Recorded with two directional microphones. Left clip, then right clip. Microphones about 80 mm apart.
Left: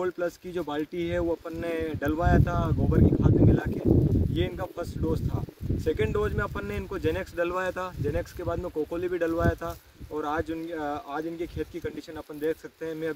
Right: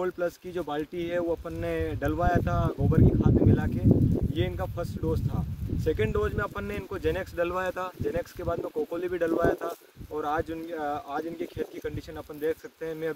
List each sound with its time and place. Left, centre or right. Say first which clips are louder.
0.0 s speech: even; left